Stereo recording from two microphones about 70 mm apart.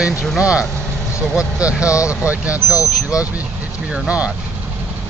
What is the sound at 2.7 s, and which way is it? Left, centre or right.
Speech, left.